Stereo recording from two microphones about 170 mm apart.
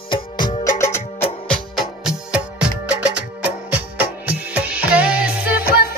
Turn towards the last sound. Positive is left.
turn(degrees=65)  # may be behind; listen again after turning